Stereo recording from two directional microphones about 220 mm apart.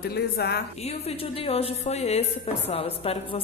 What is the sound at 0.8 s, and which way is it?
A woman's voice, 25° left (ahead or behind).